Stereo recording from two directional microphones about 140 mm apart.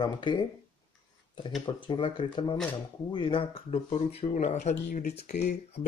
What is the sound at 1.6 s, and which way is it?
Speech, 35° left (ahead or behind).